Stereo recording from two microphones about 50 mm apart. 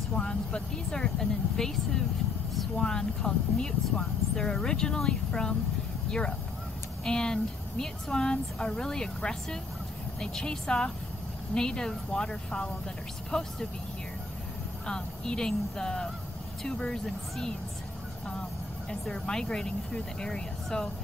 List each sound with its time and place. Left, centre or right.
0.1 s speech: centre
1.6 s speech: centre
14.9 s speech: centre
18.9 s speech: centre